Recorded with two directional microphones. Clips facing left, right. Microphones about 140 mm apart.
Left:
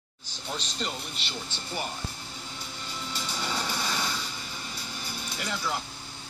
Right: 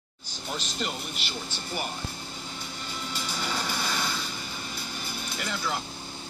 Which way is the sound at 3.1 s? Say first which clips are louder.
Even; 5° right (ahead or behind).